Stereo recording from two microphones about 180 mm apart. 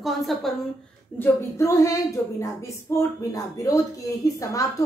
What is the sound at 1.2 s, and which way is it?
A woman's voice, 15° left (ahead or behind).